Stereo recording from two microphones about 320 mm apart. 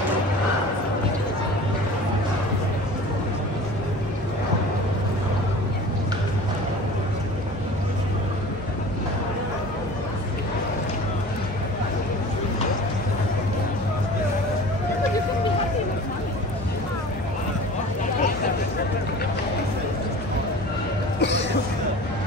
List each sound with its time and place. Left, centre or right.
21.2 s cough: left